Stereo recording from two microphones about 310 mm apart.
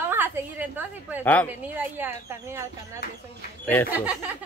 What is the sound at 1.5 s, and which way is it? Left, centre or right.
Speech, centre.